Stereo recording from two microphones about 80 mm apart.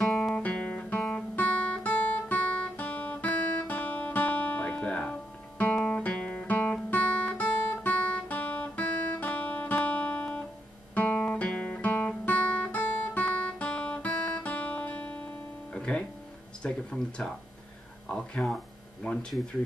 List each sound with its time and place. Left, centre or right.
0.0 s guitar: centre
9.2 s music: centre
11.0 s guitar: left
15.7 s music: centre
16.6 s a sound: centre
18.1 s speech: centre